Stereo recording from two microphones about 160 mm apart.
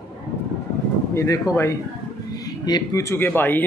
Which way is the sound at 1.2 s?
20° left (ahead or behind).